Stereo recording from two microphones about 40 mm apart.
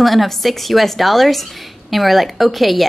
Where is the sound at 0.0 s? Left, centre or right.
Centre.